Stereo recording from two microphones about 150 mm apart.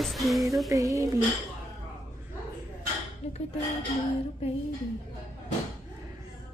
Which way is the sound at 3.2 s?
45° left (ahead or behind).